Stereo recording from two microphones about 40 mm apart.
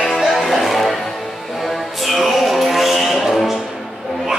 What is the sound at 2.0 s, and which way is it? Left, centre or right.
Music, centre.